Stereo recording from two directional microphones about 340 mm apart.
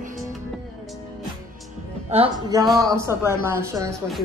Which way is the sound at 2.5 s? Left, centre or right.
Centre.